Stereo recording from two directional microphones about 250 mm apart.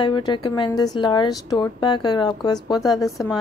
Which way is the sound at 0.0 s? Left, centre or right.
Centre.